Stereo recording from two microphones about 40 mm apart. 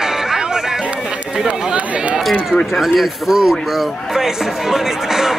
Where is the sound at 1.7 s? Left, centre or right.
Right.